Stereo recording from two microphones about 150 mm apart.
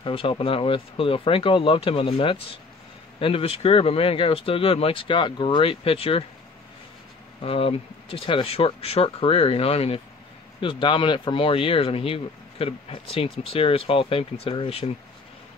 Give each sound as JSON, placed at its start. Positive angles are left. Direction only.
{"t": 0.0, "sound": "speech", "side_deg": 35}
{"t": 7.4, "sound": "speech", "side_deg": 40}